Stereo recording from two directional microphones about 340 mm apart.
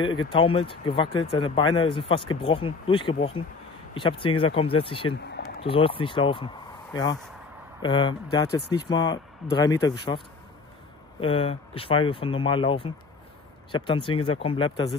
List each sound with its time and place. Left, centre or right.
0.0 s speech: centre